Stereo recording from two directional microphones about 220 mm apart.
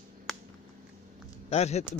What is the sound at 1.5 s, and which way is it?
Speech, 30° left (ahead or behind).